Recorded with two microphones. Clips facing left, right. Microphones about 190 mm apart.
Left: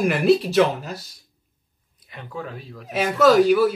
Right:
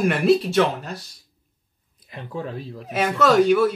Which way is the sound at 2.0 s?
35° right (ahead or behind).